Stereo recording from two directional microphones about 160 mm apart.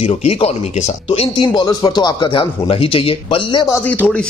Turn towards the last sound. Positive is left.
turn(degrees=10)  # may be behind; listen again after turning